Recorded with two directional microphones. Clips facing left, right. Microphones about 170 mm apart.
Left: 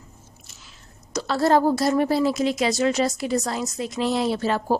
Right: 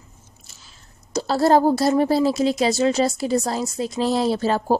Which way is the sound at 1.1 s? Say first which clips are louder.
Right 3 dB; 35° right (ahead or behind).